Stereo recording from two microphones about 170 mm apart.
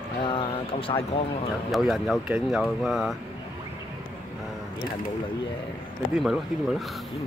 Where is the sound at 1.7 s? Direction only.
Centre (ahead or behind).